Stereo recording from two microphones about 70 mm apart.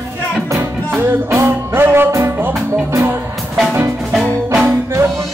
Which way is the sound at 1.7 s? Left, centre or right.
Right.